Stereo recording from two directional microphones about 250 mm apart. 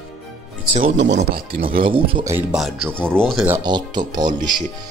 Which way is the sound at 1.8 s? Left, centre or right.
Right.